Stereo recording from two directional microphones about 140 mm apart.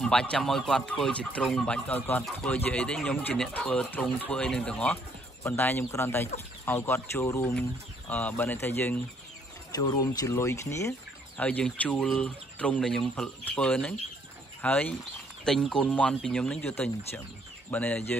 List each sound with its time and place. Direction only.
0.0 s speech: 5° left (ahead or behind); by 7.5 s 20° left (ahead or behind)
8.1 s speech: 10° left (ahead or behind)
9.8 s speech: 30° left (ahead or behind)
11.3 s speech: 10° left (ahead or behind)